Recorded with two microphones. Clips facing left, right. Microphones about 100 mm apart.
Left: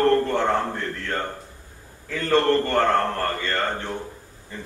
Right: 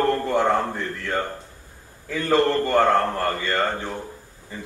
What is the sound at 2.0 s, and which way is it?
A man's voice, 10° right (ahead or behind).